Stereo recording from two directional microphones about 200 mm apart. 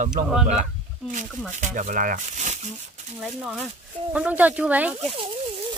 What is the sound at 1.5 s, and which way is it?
Speech, 40° right (ahead or behind).